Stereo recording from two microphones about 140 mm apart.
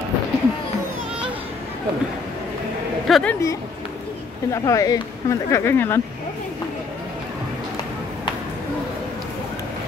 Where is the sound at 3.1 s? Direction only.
Centre (ahead or behind).